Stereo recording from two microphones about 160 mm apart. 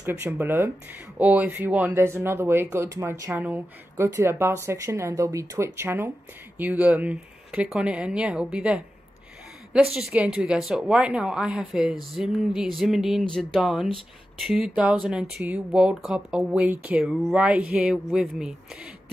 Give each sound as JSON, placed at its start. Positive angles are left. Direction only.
{"t": 0.0, "sound": "speech", "side_deg": -15}
{"t": 9.9, "sound": "speech", "side_deg": -5}